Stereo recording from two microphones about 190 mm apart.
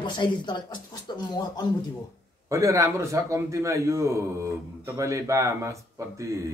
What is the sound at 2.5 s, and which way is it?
A man's voice, 15° right (ahead or behind).